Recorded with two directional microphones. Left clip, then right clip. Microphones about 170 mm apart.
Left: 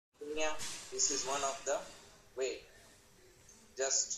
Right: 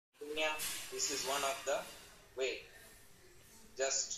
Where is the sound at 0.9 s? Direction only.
20° left (ahead or behind).